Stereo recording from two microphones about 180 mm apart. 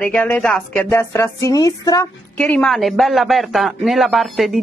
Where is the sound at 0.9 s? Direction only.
15° left (ahead or behind).